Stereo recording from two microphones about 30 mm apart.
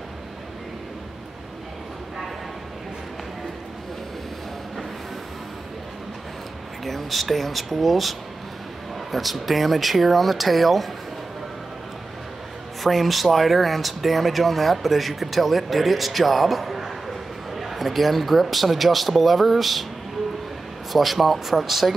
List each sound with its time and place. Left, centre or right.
6.8 s speech: centre
12.8 s speech: centre
20.9 s speech: centre